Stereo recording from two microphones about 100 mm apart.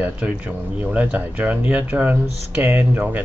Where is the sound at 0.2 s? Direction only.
15° right (ahead or behind).